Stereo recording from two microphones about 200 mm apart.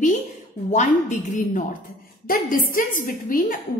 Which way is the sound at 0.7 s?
35° left (ahead or behind).